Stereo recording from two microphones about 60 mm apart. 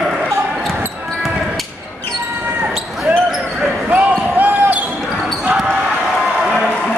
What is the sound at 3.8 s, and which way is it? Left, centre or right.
Basketball bounce, right.